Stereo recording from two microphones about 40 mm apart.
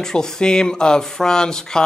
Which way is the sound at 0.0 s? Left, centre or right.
Centre.